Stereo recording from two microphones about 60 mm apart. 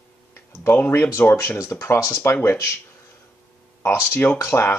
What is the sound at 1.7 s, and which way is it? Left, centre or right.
Speech, left.